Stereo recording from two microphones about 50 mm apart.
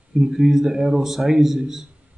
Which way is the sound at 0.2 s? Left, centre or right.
Centre.